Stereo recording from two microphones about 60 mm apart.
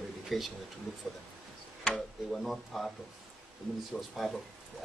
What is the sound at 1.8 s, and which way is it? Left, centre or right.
Tick-tock, centre.